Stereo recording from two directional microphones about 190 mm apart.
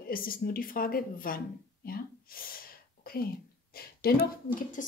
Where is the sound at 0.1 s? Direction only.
50° left (ahead or behind).